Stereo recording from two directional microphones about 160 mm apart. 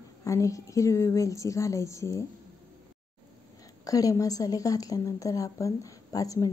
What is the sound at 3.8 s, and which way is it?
Speech, 20° left (ahead or behind).